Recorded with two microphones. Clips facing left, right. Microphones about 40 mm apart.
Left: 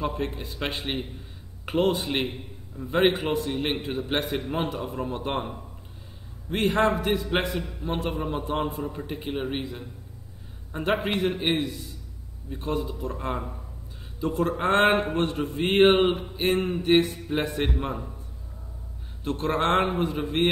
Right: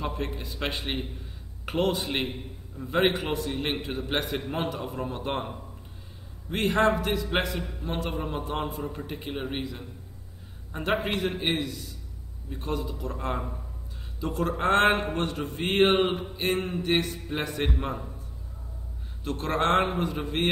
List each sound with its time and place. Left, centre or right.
0.0 s a man's voice: centre
10.7 s a man's voice: centre
16.5 s mantra: left
17.3 s a man's voice: centre
19.2 s a man's voice: centre
20.0 s a man's voice: centre